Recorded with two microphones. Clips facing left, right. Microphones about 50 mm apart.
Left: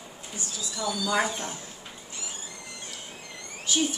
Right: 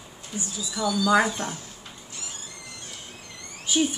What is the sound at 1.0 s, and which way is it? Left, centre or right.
Speech, right.